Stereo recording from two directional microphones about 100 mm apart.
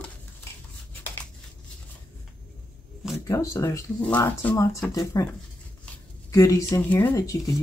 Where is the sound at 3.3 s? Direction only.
30° left (ahead or behind).